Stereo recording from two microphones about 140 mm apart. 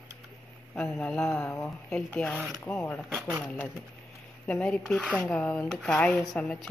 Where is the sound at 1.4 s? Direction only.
20° left (ahead or behind).